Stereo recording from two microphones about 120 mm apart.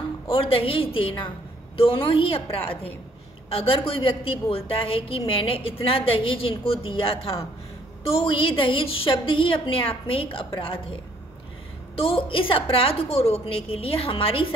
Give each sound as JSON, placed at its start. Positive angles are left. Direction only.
{"t": 0.3, "sound": "a woman's voice", "side_deg": 50}
{"t": 3.4, "sound": "a woman's voice", "side_deg": 50}
{"t": 12.0, "sound": "a woman's voice", "side_deg": 50}